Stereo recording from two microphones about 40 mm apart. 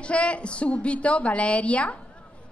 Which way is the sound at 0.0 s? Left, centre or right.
Left.